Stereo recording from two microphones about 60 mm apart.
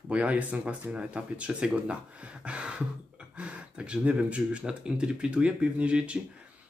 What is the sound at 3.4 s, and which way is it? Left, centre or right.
Speech, centre.